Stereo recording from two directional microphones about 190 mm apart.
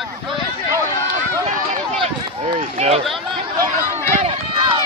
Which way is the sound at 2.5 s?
35° right (ahead or behind).